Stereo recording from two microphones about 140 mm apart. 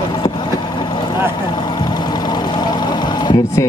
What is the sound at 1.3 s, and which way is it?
Vehicle, 30° left (ahead or behind).